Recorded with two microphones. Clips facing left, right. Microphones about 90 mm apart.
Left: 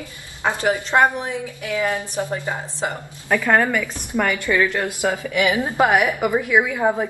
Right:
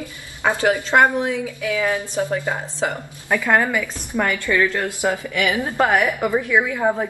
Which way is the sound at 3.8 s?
15° left (ahead or behind).